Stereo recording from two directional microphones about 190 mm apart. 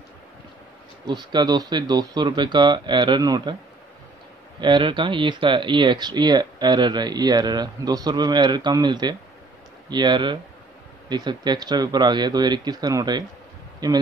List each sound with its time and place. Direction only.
1.0 s speech: 20° right (ahead or behind)
4.6 s speech: 25° right (ahead or behind)